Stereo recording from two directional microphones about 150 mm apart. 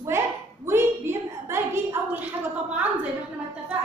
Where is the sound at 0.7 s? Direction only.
15° right (ahead or behind).